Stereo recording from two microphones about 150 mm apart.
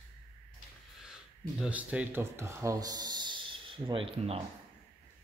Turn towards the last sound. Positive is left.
turn(degrees=-35)  # may be behind; listen again after turning